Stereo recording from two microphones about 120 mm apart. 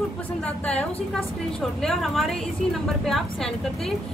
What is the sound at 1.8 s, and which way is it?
Speech, centre (ahead or behind).